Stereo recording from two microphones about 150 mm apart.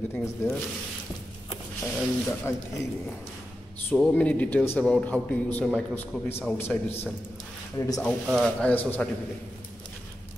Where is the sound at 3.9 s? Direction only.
5° left (ahead or behind).